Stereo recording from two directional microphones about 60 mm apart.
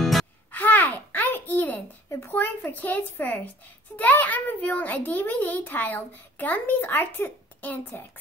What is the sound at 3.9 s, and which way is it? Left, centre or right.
A child's voice, left.